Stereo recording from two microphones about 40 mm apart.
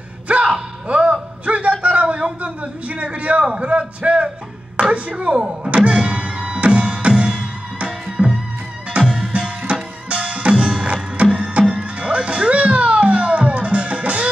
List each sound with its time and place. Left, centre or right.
0.3 s music: right
0.8 s a sound: right
4.9 s speech: right
5.3 s speech: centre
5.7 s music: right